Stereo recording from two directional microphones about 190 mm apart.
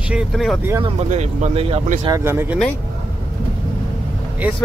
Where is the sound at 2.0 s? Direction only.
15° right (ahead or behind).